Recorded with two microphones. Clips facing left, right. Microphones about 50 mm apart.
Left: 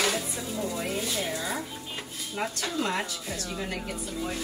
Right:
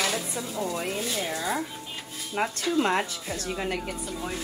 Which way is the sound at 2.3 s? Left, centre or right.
Right.